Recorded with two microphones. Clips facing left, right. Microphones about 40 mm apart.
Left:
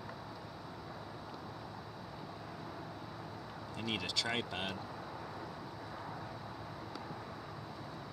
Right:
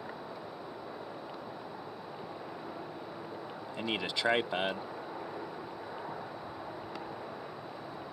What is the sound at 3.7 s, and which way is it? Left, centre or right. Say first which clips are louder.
Speech: right 3 dB; right.